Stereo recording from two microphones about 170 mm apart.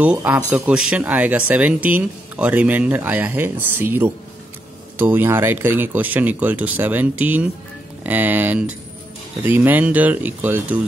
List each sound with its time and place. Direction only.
0.0 s speech: 10° right (ahead or behind)